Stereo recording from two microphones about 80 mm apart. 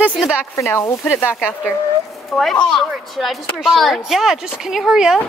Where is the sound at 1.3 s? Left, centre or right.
Centre.